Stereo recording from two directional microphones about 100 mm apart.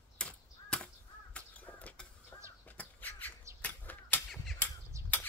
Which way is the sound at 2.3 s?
30° left (ahead or behind).